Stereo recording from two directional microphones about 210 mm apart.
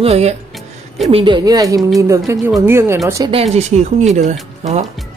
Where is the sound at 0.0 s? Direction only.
30° right (ahead or behind); by 3.0 s 10° right (ahead or behind).